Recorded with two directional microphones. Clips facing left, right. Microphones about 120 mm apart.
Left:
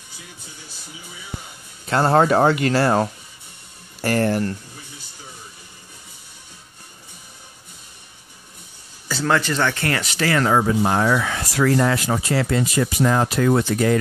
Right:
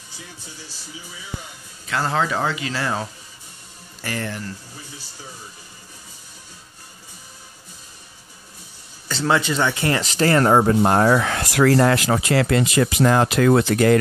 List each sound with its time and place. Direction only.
1.9 s speech: 40° left (ahead or behind)
9.2 s speech: 10° right (ahead or behind)
10.1 s speech: 40° right (ahead or behind)
11.2 s speech: 60° right (ahead or behind); by 13.9 s 80° right